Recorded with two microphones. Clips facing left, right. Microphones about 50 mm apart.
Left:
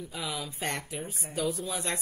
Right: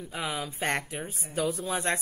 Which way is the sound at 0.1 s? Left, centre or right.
Right.